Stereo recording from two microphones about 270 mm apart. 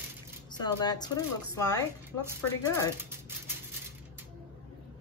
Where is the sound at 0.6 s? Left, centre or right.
Centre.